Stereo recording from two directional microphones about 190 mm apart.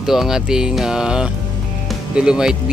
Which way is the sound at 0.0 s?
Centre (ahead or behind).